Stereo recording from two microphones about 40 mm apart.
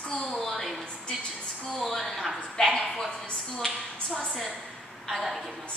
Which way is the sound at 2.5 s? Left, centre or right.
Centre.